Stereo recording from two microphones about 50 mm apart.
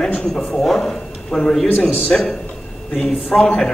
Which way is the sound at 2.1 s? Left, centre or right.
Centre.